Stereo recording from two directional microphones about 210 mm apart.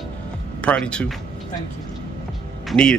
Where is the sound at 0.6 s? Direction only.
5° left (ahead or behind).